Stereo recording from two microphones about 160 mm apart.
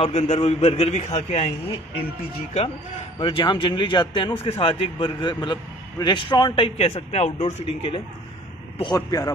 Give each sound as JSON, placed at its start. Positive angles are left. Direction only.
{"t": 0.0, "sound": "a man's voice", "side_deg": 40}
{"t": 3.2, "sound": "a man's voice", "side_deg": 35}